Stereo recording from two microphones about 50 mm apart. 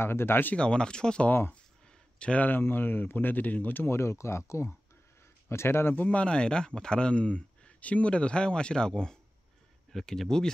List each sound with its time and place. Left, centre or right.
0.0 s speech: left
0.6 s speech: centre
1.5 s a sound: centre
2.4 s speech: left
3.9 s speech: left
5.9 s speech: left
6.2 s speech: centre